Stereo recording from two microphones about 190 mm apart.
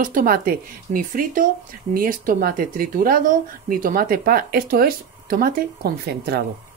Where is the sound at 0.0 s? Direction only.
45° right (ahead or behind).